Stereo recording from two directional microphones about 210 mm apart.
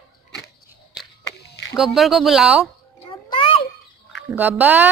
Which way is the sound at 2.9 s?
25° left (ahead or behind).